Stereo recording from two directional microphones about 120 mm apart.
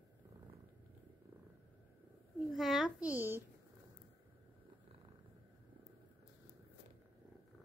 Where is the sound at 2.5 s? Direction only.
Centre (ahead or behind); by 3.4 s 15° right (ahead or behind).